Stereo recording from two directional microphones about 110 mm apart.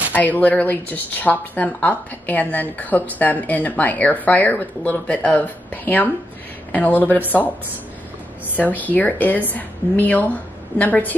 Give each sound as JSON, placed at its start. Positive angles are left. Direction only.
{"t": 0.1, "sound": "speech", "side_deg": 15}
{"t": 8.5, "sound": "speech", "side_deg": 15}